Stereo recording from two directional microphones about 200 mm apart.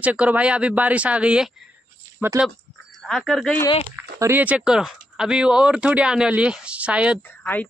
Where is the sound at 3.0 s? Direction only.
Centre (ahead or behind).